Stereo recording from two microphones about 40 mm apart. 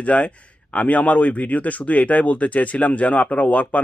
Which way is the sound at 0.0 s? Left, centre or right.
Left.